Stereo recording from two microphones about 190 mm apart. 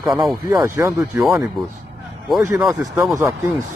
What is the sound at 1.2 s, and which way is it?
Speech, centre (ahead or behind).